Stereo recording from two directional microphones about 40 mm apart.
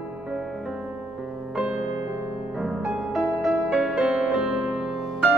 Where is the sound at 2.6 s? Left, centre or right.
Centre.